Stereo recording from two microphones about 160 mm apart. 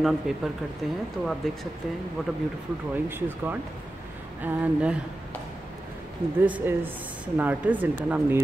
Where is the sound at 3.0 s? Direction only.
10° right (ahead or behind).